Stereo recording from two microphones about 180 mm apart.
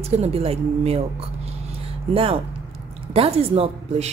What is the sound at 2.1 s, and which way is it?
Speech, 30° right (ahead or behind).